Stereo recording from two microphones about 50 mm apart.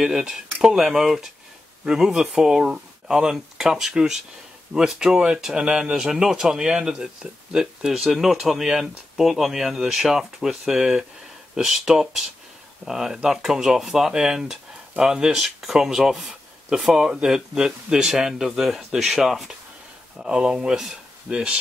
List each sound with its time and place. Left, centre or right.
0.3 s speech: centre
20.2 s speech: centre